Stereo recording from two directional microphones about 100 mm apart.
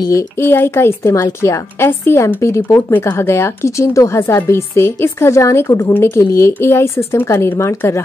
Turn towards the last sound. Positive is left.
turn(degrees=30)  # may be behind; listen again after turning